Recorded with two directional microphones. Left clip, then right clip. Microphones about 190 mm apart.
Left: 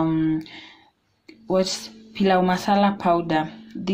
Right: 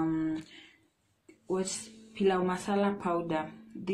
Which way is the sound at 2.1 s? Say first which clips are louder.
Left 9 dB; 40° left (ahead or behind).